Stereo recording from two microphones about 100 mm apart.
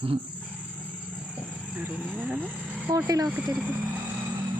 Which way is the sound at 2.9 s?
35° right (ahead or behind).